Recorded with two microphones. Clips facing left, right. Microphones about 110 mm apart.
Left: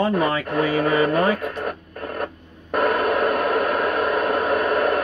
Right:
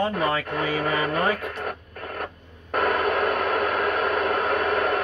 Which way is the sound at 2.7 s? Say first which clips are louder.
Left 3 dB; 5° left (ahead or behind).